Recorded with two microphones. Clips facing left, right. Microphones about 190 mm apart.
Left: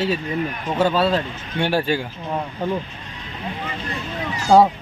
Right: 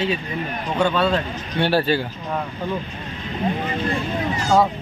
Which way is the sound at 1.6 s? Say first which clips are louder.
Right 1 dB; 15° left (ahead or behind).